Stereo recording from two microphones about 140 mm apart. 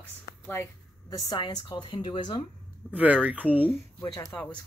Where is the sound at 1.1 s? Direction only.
25° left (ahead or behind).